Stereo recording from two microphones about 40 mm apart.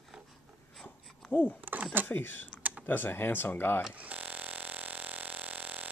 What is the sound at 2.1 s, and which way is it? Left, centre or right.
Speech, left.